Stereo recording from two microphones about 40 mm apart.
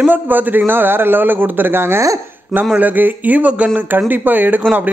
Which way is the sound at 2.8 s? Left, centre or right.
Right.